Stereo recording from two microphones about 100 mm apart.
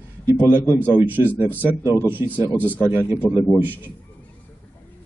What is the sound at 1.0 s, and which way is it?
Speech, 20° right (ahead or behind).